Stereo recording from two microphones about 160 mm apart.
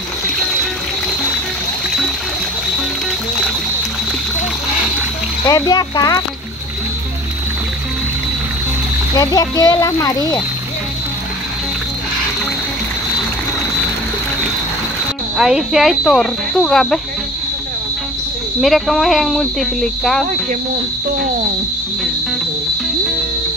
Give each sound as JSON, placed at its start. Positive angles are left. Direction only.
{"t": 5.5, "sound": "speech", "side_deg": 25}
{"t": 9.1, "sound": "speech", "side_deg": 25}
{"t": 15.3, "sound": "speech", "side_deg": -5}
{"t": 18.6, "sound": "speech", "side_deg": 0}